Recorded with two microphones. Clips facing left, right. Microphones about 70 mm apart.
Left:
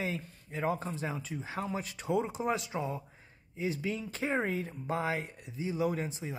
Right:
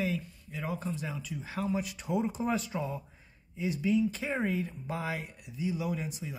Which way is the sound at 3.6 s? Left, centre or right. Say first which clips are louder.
Right 6 dB; left.